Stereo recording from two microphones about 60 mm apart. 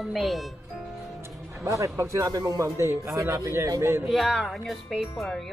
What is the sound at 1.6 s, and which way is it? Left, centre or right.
Speech, right.